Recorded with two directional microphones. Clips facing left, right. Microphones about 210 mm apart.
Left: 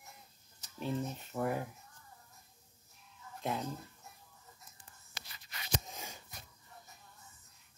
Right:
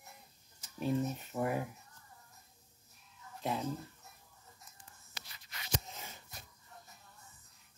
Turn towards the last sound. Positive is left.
turn(degrees=15)  # may be behind; listen again after turning